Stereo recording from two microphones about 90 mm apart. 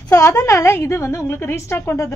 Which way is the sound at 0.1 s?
35° left (ahead or behind).